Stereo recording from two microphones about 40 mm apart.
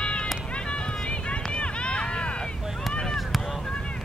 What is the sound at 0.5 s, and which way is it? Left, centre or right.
Run, left.